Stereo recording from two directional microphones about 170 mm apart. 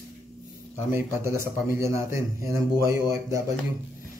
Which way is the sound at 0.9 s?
15° right (ahead or behind).